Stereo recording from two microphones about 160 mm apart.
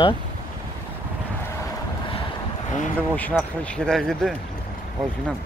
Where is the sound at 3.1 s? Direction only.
10° left (ahead or behind).